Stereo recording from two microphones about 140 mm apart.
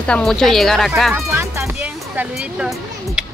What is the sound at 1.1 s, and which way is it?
Music, 20° right (ahead or behind).